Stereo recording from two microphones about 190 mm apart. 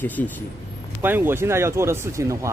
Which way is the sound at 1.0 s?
10° right (ahead or behind).